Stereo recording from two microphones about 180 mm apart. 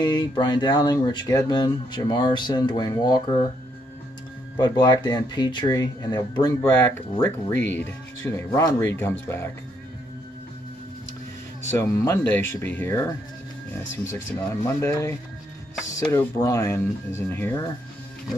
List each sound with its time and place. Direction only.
0.0 s speech: 25° left (ahead or behind)
4.6 s speech: 25° left (ahead or behind)
11.8 s speech: 15° left (ahead or behind)
14.1 s speech: 15° left (ahead or behind)